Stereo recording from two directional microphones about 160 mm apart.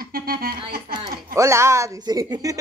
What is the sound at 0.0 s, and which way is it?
Speech, 70° right (ahead or behind).